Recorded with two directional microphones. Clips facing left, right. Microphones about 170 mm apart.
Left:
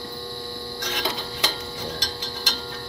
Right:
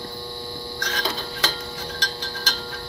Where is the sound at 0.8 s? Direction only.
20° left (ahead or behind).